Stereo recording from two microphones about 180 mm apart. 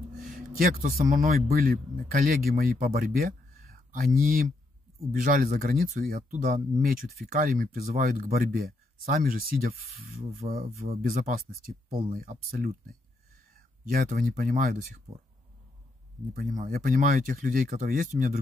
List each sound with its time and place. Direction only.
0.3 s a man's voice: 55° right (ahead or behind)
12.4 s speech: 55° right (ahead or behind)
16.3 s speech: 50° right (ahead or behind)